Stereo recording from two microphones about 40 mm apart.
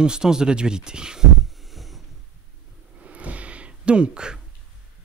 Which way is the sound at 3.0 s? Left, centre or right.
Right.